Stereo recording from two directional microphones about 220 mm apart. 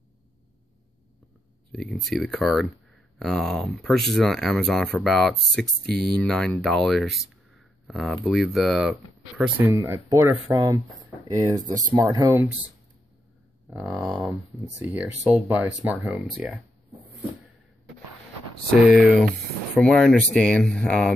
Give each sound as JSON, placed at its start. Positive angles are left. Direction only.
{"t": 1.7, "sound": "speech", "side_deg": 0}
{"t": 13.7, "sound": "speech", "side_deg": -10}
{"t": 18.7, "sound": "speech", "side_deg": 0}